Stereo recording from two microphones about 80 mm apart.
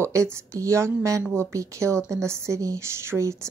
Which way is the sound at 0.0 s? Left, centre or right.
Right.